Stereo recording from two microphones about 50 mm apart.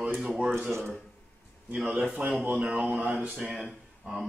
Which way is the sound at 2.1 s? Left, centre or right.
Right.